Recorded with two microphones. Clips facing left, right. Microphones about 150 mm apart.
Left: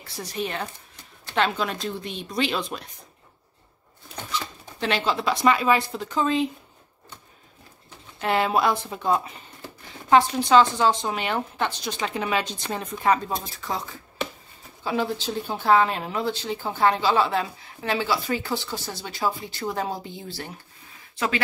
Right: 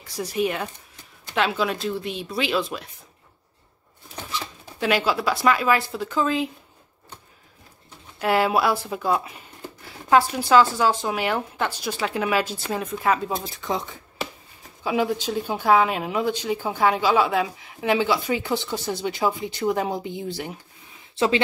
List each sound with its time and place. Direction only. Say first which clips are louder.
0.0 s speech: right 6 dB; 10° right (ahead or behind)
4.3 s speech: left 1 dB; 5° right (ahead or behind)
8.2 s speech: right 2 dB; 5° right (ahead or behind)
14.8 s speech: right 3 dB; 15° right (ahead or behind)
21.1 s a sound: right 6 dB; 25° right (ahead or behind)